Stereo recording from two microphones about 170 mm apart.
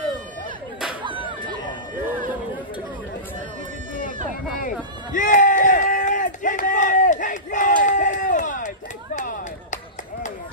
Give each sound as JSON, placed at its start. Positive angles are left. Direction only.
{"t": 4.6, "sound": "run", "side_deg": 50}